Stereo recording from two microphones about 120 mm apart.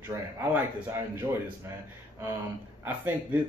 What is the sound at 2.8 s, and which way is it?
Speech, 15° right (ahead or behind).